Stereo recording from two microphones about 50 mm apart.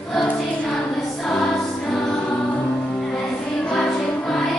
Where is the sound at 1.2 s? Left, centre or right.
Centre.